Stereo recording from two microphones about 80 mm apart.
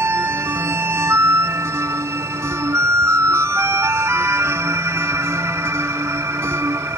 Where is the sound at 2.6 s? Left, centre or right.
Right.